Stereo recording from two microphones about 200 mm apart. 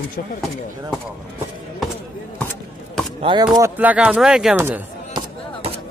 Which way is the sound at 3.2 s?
25° right (ahead or behind).